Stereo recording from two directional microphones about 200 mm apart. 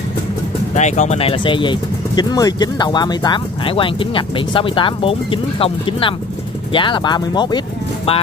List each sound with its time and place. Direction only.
0.7 s speech: 35° left (ahead or behind)